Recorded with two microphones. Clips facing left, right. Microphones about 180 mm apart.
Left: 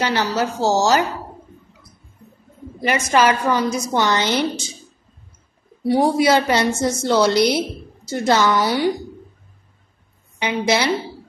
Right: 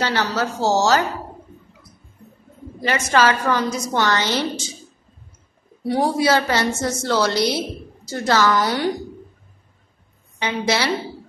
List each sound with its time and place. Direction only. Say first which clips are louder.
0.0 s a woman's voice: left 2 dB; 15° left (ahead or behind)
2.8 s a woman's voice: left 1 dB; 15° left (ahead or behind)
5.9 s a woman's voice: left 3 dB; 10° left (ahead or behind)
8.5 s a woman's voice: left 1 dB; 5° left (ahead or behind)
10.4 s a woman's voice: left 2 dB; 15° left (ahead or behind)